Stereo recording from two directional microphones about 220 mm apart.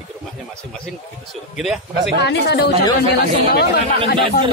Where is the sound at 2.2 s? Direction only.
50° left (ahead or behind).